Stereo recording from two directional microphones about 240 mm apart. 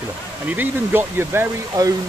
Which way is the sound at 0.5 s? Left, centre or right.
Centre.